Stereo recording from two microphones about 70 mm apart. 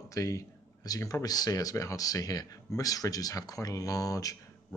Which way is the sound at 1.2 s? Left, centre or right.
Left.